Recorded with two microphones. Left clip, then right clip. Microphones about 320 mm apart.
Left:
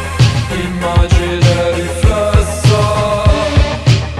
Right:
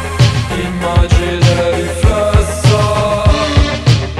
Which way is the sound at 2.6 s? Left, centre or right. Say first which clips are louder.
Even; centre.